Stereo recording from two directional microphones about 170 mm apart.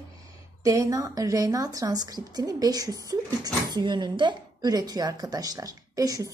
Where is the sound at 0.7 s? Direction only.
20° right (ahead or behind).